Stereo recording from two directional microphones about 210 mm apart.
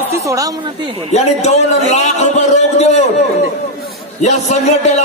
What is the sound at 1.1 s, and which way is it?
A man's voice, 30° left (ahead or behind).